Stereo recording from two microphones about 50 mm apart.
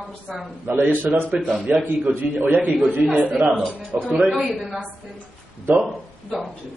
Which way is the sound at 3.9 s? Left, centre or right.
Right.